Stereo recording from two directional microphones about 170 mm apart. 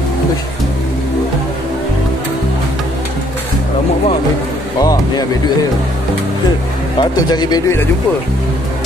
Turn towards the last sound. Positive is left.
turn(degrees=25)  # may be behind; listen again after turning